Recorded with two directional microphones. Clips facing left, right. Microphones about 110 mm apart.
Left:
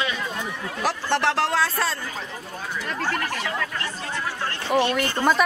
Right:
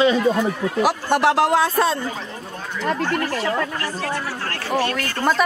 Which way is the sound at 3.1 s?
35° right (ahead or behind).